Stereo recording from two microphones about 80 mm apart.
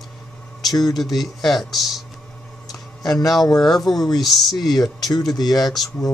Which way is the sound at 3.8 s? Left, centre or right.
Left.